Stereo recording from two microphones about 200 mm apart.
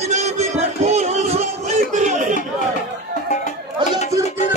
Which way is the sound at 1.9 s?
35° right (ahead or behind).